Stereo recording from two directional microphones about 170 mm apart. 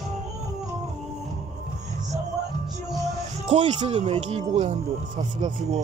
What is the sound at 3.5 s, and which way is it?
Speech, 35° right (ahead or behind).